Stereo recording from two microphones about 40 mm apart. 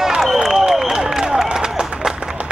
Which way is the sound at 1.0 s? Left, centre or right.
Centre.